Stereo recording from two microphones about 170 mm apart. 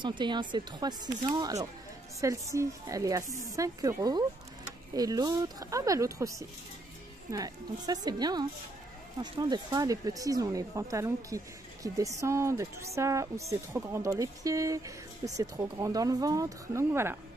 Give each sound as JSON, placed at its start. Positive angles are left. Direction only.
{"t": 0.0, "sound": "speech", "side_deg": -25}